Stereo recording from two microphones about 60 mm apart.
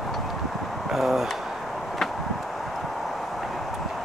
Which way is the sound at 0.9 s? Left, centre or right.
Centre.